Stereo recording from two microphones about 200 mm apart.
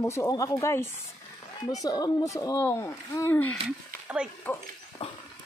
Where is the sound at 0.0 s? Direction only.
15° left (ahead or behind).